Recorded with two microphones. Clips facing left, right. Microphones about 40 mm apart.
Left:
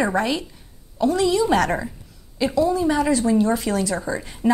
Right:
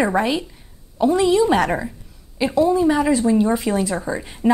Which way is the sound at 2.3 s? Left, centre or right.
Right.